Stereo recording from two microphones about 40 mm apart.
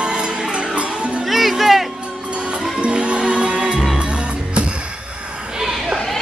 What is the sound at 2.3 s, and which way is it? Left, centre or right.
Music, right.